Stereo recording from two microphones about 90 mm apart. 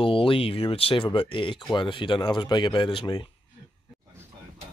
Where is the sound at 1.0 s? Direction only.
60° left (ahead or behind).